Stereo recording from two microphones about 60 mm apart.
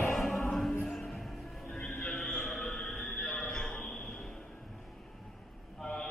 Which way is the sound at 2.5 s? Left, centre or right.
Centre.